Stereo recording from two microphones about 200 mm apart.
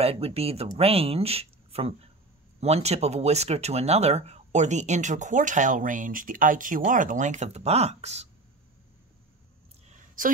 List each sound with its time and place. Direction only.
0.0 s speech: 30° right (ahead or behind)